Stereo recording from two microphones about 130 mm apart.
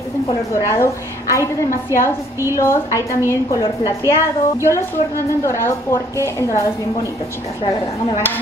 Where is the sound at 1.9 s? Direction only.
20° right (ahead or behind).